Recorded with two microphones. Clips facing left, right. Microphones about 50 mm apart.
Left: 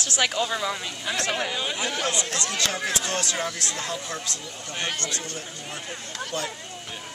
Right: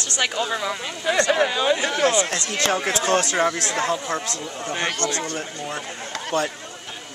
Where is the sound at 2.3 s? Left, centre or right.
Right.